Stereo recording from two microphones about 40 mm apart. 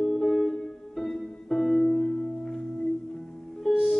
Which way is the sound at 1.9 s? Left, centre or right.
Centre.